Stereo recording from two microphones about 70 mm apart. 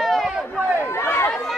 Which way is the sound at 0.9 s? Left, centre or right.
Left.